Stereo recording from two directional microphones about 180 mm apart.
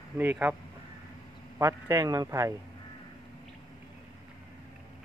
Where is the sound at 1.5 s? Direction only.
15° right (ahead or behind).